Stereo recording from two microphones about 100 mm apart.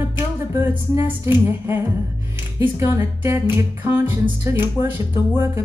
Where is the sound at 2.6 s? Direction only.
25° right (ahead or behind).